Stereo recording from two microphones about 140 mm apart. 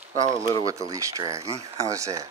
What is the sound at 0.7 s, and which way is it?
Speech, 25° right (ahead or behind).